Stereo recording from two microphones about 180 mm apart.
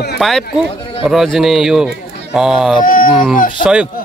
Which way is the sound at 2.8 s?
50° left (ahead or behind).